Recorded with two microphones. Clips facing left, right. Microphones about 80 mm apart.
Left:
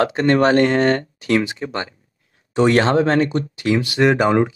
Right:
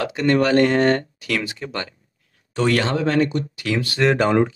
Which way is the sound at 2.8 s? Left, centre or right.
Left.